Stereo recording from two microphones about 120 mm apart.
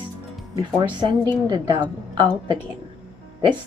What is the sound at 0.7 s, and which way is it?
Speech, 40° right (ahead or behind).